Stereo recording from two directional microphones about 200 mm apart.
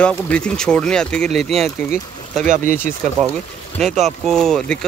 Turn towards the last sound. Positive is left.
turn(degrees=5)  # may be behind; listen again after turning